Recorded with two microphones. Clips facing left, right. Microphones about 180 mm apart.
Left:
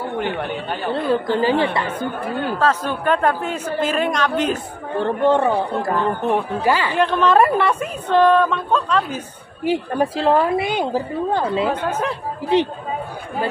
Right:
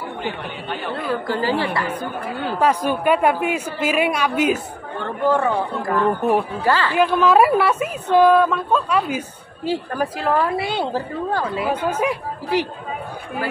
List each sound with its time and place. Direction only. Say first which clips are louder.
0.9 s a woman's voice: left 5 dB; 30° left (ahead or behind)
2.6 s a woman's voice: right 3 dB; 10° right (ahead or behind)
4.9 s speech: left 3 dB; 30° left (ahead or behind)
6.0 s a woman's voice: right 5 dB; 5° right (ahead or behind)
6.6 s speech: even; 15° left (ahead or behind)
7.0 s a woman's voice: right 1 dB; 5° right (ahead or behind)
9.7 s a woman's voice: left 3 dB; 25° left (ahead or behind)
11.7 s a woman's voice: right 1 dB; 10° right (ahead or behind)
12.5 s a woman's voice: left 4 dB; 25° left (ahead or behind)